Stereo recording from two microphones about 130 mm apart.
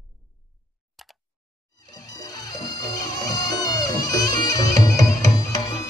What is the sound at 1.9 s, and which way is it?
Music, 30° left (ahead or behind).